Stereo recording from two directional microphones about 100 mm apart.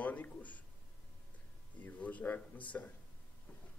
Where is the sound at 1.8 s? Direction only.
15° left (ahead or behind).